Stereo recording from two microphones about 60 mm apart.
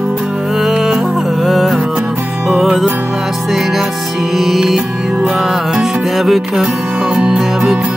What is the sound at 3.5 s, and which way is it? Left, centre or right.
Music, centre.